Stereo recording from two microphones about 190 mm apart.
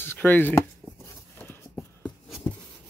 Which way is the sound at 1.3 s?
10° left (ahead or behind).